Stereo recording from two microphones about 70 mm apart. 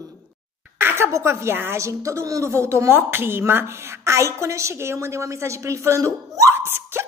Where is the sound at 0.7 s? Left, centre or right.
Right.